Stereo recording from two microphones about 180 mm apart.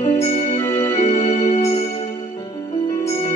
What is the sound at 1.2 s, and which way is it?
Music, 40° left (ahead or behind).